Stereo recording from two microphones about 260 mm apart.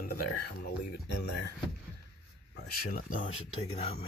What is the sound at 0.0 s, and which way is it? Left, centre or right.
Speech, left.